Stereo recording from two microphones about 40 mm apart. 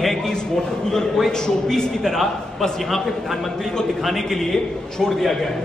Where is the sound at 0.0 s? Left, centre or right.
Centre.